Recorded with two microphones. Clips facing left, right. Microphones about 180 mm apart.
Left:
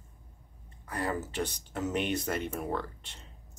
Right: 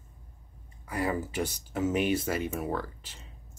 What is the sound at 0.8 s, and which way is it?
Speech, 10° right (ahead or behind).